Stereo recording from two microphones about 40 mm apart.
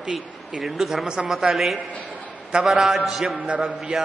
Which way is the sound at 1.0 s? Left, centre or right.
Centre.